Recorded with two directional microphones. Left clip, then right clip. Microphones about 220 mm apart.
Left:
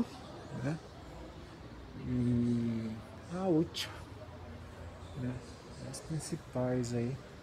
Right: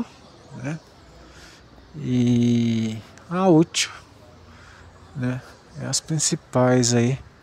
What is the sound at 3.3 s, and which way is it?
Speech, 40° right (ahead or behind).